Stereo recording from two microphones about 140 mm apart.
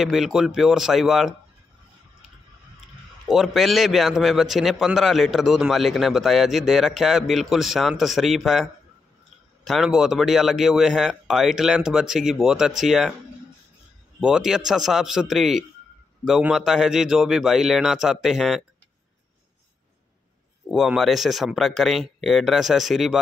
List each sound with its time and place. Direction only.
0.0 s a man's voice: centre (ahead or behind)
3.3 s a man's voice: centre (ahead or behind)
9.7 s a man's voice: centre (ahead or behind)
14.2 s a man's voice: 5° right (ahead or behind)
20.6 s a man's voice: centre (ahead or behind)